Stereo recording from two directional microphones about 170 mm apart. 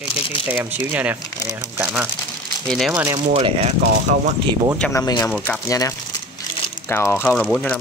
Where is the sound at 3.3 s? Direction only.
35° right (ahead or behind).